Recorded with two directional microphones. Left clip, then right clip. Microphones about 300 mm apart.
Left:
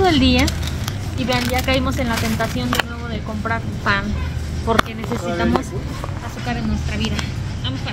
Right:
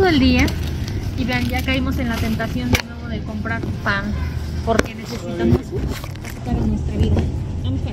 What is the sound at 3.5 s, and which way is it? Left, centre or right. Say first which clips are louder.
Speech: left 2 dB; centre.